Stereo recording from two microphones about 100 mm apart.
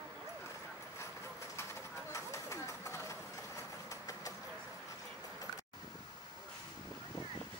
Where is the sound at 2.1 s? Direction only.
30° left (ahead or behind).